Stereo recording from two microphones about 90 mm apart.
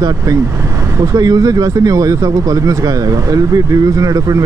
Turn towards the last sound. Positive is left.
turn(degrees=-40)  # may be behind; listen again after turning